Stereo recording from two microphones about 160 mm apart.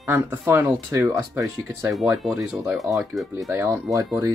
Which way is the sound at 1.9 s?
5° right (ahead or behind).